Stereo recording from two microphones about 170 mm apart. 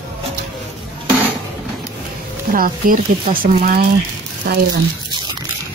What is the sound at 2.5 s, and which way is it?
Speech, 55° right (ahead or behind).